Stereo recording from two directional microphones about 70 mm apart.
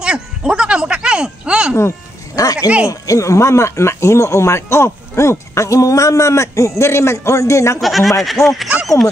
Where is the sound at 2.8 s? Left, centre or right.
Left.